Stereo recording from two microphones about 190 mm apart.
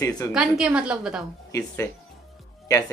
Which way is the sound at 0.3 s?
5° right (ahead or behind).